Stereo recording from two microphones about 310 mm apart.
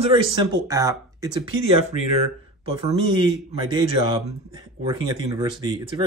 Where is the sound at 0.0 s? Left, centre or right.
Centre.